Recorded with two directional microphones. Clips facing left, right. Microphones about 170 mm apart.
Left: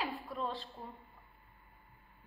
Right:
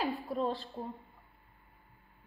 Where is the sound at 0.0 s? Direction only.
40° right (ahead or behind).